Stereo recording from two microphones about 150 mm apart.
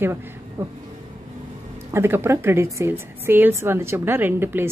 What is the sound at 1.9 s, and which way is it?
A woman's voice, 15° right (ahead or behind).